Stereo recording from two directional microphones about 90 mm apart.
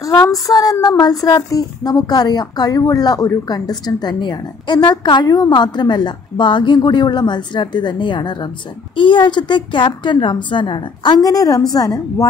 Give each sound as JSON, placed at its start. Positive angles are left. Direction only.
{"t": 0.0, "sound": "child singing", "side_deg": 40}
{"t": 0.5, "sound": "a woman's voice", "side_deg": 45}